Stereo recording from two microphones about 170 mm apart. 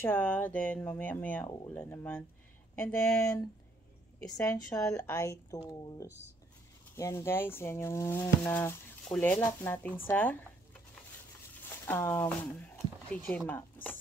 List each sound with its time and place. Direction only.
0.0 s speech: 10° left (ahead or behind)